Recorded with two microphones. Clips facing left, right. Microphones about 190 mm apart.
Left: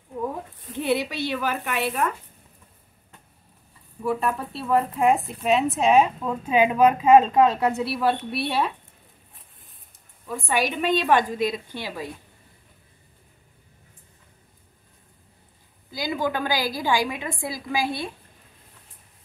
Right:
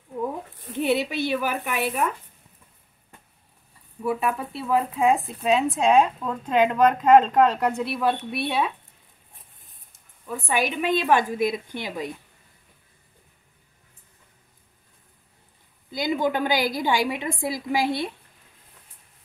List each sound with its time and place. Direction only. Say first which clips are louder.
0.7 s a woman's voice: right 1 dB; 15° right (ahead or behind)
4.0 s speech: even; 5° right (ahead or behind)
10.4 s a woman's voice: left 1 dB; 10° right (ahead or behind)
15.9 s a woman's voice: right 2 dB; 20° right (ahead or behind)